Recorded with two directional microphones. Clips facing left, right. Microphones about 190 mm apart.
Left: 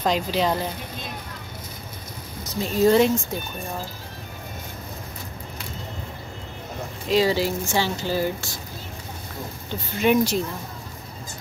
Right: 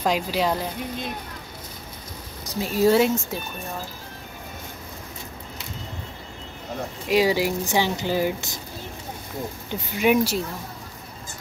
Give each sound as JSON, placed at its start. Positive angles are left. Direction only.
{"t": 0.0, "sound": "speech", "side_deg": -5}
{"t": 2.6, "sound": "speech", "side_deg": -5}
{"t": 7.1, "sound": "speech", "side_deg": -10}
{"t": 9.7, "sound": "speech", "side_deg": -10}